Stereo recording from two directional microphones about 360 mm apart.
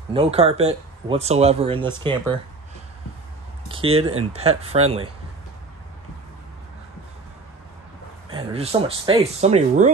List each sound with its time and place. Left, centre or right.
0.1 s speech: centre
3.6 s a sound: centre
4.2 s speech: centre
8.3 s speech: centre